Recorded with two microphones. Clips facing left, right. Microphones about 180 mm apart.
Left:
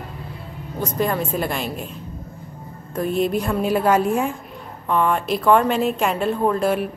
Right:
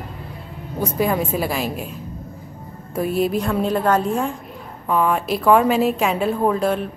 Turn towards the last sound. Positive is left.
turn(degrees=0)  # may be behind; listen again after turning